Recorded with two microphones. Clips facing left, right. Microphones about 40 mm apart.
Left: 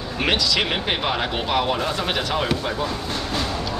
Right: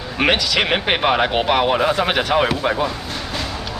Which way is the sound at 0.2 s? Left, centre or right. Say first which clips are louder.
Right 4 dB; right.